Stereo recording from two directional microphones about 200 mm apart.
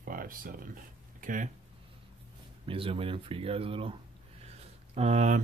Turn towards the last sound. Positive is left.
turn(degrees=-35)  # may be behind; listen again after turning